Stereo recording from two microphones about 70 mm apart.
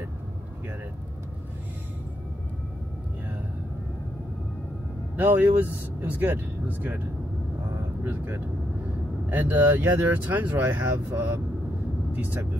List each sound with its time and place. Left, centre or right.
5.1 s speech: right
8.0 s speech: right